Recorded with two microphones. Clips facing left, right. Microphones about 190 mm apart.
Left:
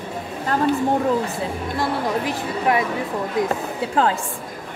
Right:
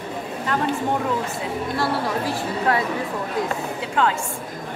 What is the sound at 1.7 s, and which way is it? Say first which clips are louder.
A woman's voice: left 1 dB; 15° left (ahead or behind).